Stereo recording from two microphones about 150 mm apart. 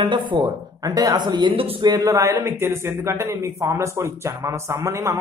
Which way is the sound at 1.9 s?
25° right (ahead or behind).